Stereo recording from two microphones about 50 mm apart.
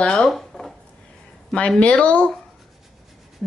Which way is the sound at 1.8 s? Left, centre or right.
Left.